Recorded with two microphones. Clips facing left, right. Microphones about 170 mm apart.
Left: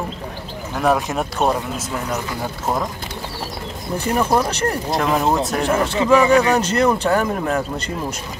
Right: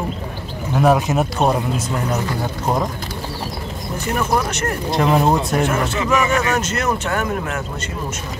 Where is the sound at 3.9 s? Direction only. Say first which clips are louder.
Left 2 dB; 30° left (ahead or behind).